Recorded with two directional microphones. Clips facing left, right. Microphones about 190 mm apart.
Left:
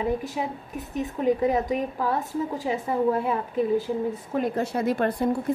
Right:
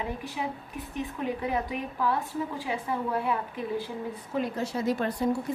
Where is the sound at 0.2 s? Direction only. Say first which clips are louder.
Left 4 dB; 45° left (ahead or behind).